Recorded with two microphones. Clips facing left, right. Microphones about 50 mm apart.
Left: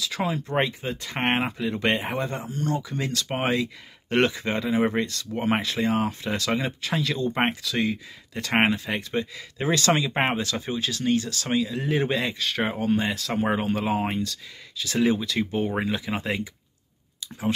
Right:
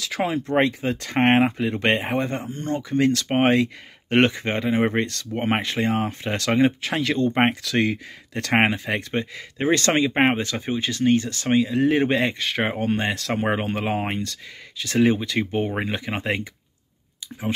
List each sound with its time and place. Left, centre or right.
0.0 s speech: right
0.6 s speech: right
9.1 s speech: right
13.3 s speech: right